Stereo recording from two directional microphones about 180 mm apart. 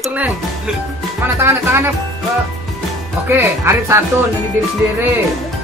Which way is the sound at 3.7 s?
15° right (ahead or behind).